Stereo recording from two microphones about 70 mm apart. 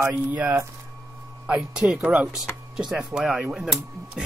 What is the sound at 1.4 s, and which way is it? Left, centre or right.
Speech, centre.